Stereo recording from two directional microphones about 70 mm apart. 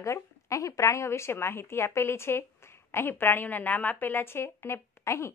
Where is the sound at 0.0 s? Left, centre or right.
Left.